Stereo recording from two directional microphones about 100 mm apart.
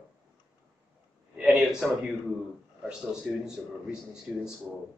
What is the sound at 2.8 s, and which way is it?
Speech, 10° right (ahead or behind).